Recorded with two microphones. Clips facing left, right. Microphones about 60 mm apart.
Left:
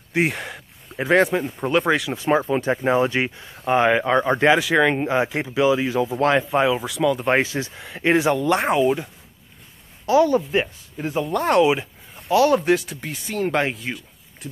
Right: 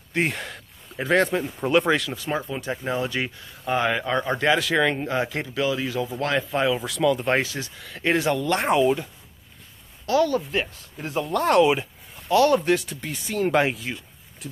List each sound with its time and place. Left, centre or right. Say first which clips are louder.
0.1 s speech: left 3 dB; centre
2.1 s speech: left 8 dB; left
4.6 s speech: left 4 dB; centre
6.9 s speech: left 1 dB; centre
7.2 s speech: left 3 dB; left
8.5 s speech: left 1 dB; centre
10.0 s speech: left 4 dB; centre